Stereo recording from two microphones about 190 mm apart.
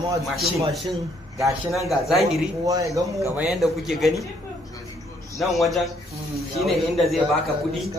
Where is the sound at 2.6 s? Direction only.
15° right (ahead or behind).